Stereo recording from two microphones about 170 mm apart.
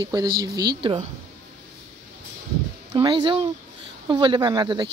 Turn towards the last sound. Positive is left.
turn(degrees=-25)  # may be behind; listen again after turning